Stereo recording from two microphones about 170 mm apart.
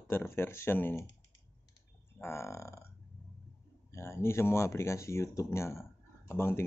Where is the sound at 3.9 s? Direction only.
15° left (ahead or behind).